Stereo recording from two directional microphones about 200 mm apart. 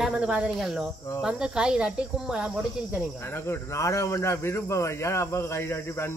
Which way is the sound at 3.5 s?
15° left (ahead or behind).